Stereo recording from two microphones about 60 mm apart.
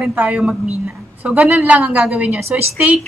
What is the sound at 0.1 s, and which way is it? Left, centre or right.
A woman's voice, right.